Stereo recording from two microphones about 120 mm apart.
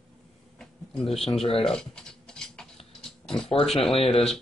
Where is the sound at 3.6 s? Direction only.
Centre (ahead or behind).